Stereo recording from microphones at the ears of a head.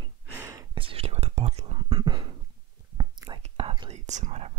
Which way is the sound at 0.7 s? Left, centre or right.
Right.